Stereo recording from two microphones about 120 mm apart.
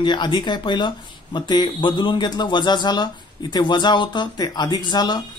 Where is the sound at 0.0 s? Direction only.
40° left (ahead or behind).